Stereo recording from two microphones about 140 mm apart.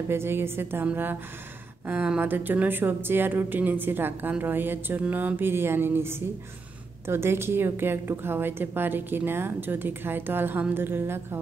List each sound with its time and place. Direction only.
0.1 s a woman's voice: 15° right (ahead or behind)